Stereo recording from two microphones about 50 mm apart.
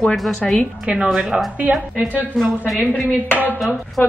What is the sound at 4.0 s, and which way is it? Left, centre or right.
Speech, left.